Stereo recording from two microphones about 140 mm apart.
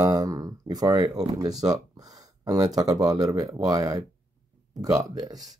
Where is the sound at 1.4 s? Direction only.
25° right (ahead or behind).